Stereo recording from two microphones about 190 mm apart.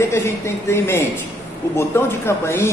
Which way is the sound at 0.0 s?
15° left (ahead or behind).